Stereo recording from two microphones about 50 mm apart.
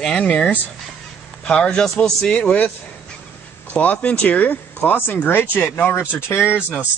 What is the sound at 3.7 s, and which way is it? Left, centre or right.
Speech, left.